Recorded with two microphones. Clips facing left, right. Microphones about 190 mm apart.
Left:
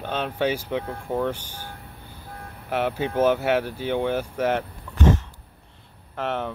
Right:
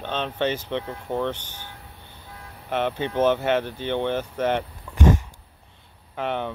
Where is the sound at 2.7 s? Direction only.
10° left (ahead or behind).